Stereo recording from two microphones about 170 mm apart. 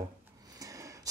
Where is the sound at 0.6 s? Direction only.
20° right (ahead or behind).